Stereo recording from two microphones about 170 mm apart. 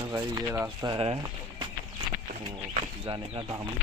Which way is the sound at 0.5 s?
15° right (ahead or behind).